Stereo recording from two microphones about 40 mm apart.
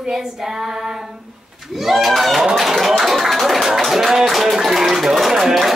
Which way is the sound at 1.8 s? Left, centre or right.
Centre.